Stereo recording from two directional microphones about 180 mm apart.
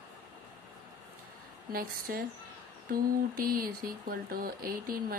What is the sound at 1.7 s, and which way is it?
Speech, 55° right (ahead or behind).